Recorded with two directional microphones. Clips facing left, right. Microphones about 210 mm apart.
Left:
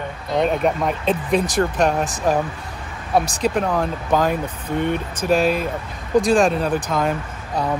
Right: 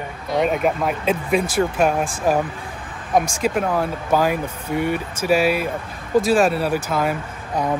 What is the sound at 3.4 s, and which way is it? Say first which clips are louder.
Speech: even; 5° right (ahead or behind).